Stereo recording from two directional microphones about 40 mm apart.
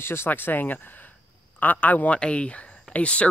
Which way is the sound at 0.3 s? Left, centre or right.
Left.